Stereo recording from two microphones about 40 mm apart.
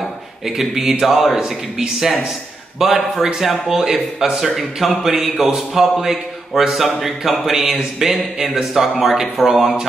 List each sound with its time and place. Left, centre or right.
0.5 s speech: centre